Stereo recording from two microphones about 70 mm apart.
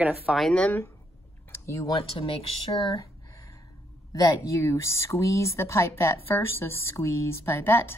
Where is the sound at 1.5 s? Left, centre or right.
Left.